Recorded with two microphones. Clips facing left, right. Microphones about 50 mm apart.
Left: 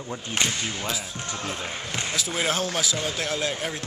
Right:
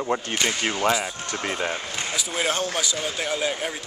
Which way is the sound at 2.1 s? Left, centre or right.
Centre.